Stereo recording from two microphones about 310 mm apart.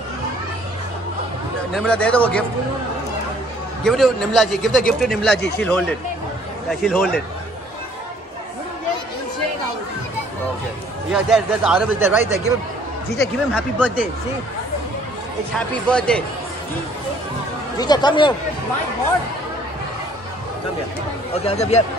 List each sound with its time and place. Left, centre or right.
1.8 s speech: centre
3.8 s speech: centre
11.1 s speech: centre
15.5 s speech: centre
17.7 s speech: centre
21.3 s speech: centre